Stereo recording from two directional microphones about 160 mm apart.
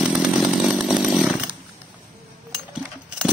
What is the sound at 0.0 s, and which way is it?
Chainsaw, 5° right (ahead or behind).